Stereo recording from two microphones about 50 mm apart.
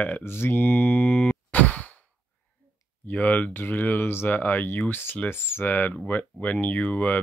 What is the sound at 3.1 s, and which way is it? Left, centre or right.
Speech, left.